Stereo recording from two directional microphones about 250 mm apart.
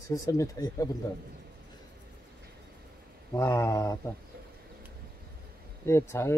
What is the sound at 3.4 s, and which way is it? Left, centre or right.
Speech, centre.